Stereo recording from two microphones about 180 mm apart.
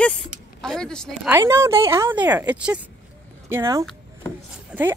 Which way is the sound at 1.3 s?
15° right (ahead or behind).